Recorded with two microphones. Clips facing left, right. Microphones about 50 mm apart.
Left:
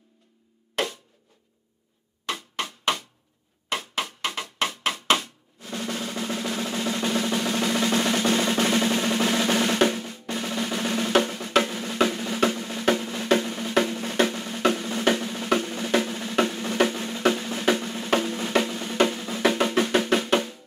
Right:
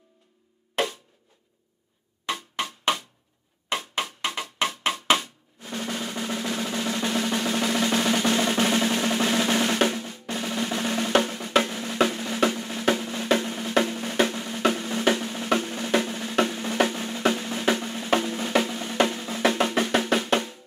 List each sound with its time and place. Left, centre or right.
2.2 s music: centre